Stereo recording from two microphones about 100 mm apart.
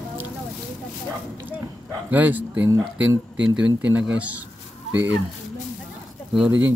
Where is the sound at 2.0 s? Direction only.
15° right (ahead or behind).